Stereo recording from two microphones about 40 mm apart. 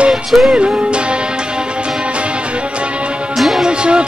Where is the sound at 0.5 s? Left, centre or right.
Right.